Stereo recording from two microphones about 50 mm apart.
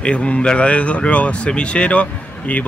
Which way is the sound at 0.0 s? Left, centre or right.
Left.